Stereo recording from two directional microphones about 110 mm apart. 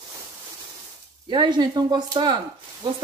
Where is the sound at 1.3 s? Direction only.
40° right (ahead or behind).